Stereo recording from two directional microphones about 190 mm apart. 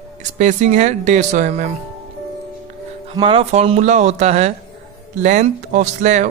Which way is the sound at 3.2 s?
30° right (ahead or behind).